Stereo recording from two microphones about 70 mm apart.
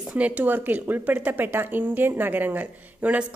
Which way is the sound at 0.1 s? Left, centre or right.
Right.